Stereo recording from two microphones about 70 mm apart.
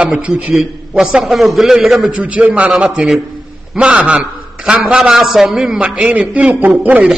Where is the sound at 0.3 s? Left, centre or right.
Centre.